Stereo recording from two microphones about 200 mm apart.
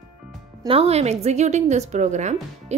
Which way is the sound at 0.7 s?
30° right (ahead or behind).